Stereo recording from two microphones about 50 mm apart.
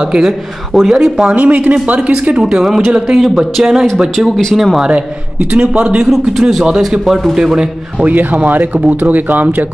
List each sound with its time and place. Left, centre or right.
0.0 s a man's voice: centre
1.3 s a man's voice: right; by 4.3 s centre
4.8 s a man's voice: right
5.9 s a man's voice: centre
8.0 s speech: right